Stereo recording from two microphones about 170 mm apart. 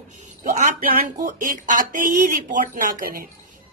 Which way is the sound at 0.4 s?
45° right (ahead or behind).